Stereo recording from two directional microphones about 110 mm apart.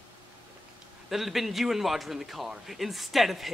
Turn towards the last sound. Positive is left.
turn(degrees=0)  # may be behind; listen again after turning